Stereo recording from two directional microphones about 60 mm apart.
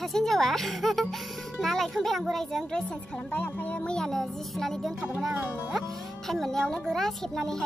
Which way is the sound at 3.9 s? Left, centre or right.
Centre.